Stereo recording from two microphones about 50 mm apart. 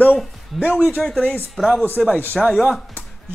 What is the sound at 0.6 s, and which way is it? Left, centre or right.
Speech, right.